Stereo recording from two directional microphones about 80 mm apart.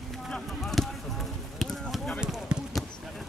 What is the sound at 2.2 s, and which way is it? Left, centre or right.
Basketball bounce, centre.